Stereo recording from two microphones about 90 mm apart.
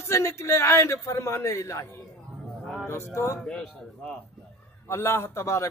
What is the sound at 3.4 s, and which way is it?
Speech, 5° left (ahead or behind).